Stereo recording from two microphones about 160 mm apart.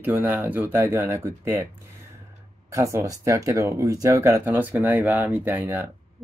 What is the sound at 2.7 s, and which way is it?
Speech, 20° right (ahead or behind).